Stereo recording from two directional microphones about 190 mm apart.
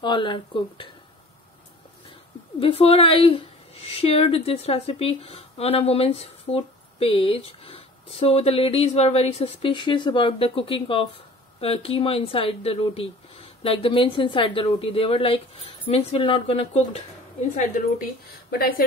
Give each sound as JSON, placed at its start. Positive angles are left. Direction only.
{"t": 0.0, "sound": "a woman's voice", "side_deg": 25}
{"t": 2.6, "sound": "a woman's voice", "side_deg": 30}
{"t": 18.6, "sound": "a woman's voice", "side_deg": 50}